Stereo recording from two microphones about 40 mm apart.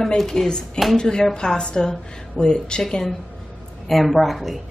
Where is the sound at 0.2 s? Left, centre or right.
Centre.